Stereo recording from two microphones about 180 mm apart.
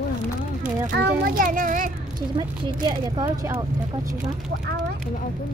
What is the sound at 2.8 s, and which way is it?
Speech, 25° right (ahead or behind).